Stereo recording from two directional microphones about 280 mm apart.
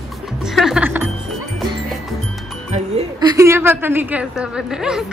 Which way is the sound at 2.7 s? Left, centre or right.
Right.